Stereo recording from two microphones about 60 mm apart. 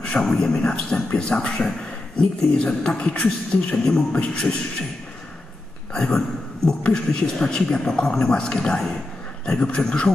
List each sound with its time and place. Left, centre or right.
0.0 s speech: centre
4.1 s speech: left
5.9 s speech: centre